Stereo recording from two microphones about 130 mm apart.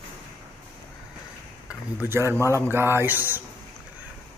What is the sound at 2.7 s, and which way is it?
Mantra, 20° right (ahead or behind).